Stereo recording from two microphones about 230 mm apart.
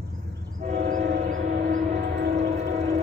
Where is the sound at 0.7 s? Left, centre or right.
Right.